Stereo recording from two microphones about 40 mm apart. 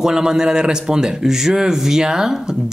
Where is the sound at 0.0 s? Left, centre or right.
Centre.